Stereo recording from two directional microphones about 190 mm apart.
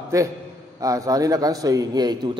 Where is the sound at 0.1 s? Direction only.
15° right (ahead or behind).